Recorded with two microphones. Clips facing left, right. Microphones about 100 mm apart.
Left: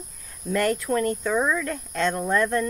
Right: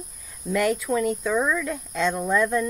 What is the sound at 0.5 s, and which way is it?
Speech, centre (ahead or behind).